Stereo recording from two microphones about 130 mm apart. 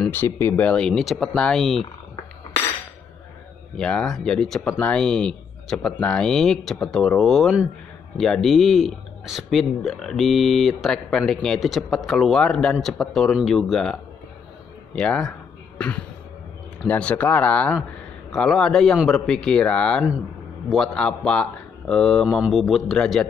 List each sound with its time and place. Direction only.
0.1 s speech: 20° left (ahead or behind); by 1.9 s centre (ahead or behind)
3.7 s speech: 5° left (ahead or behind)
15.0 s speech: 5° left (ahead or behind)
16.8 s speech: 10° left (ahead or behind)